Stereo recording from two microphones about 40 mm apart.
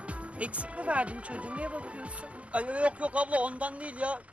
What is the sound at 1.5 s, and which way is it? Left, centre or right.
Speech, right.